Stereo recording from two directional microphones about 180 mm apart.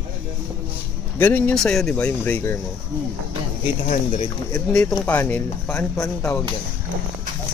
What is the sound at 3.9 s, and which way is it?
Speech, 40° left (ahead or behind).